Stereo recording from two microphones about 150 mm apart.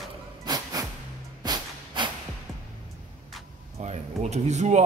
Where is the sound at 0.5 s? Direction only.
30° right (ahead or behind).